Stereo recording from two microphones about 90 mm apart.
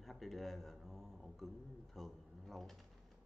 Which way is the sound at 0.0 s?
Centre (ahead or behind).